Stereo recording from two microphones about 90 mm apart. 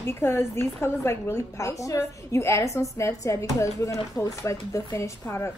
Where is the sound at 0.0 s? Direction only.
30° left (ahead or behind).